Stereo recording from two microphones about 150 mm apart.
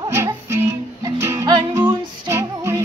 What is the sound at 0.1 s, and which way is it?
Music, 15° right (ahead or behind).